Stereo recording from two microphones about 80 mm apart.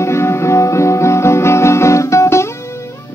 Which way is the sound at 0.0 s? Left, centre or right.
Left.